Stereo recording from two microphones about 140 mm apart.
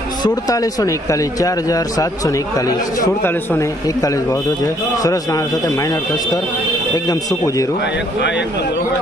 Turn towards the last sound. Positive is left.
turn(degrees=25)  # may be behind; listen again after turning